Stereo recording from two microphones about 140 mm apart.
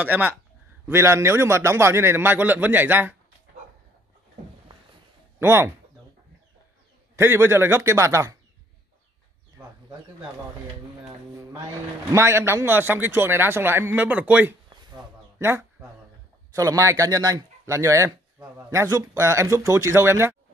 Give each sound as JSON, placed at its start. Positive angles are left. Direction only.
{"t": 0.0, "sound": "a man's voice", "side_deg": -15}
{"t": 5.4, "sound": "a man's voice", "side_deg": -15}
{"t": 7.2, "sound": "a man's voice", "side_deg": -15}
{"t": 9.6, "sound": "bird", "side_deg": -15}
{"t": 12.1, "sound": "a man's voice", "side_deg": -20}
{"t": 15.3, "sound": "a sound", "side_deg": -15}
{"t": 16.5, "sound": "speech", "side_deg": -20}